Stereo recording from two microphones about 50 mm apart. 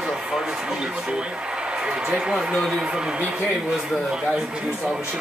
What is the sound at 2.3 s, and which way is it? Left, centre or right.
Speech, centre.